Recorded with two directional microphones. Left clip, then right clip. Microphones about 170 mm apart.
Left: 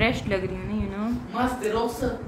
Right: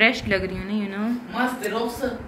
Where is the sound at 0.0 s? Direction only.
5° left (ahead or behind).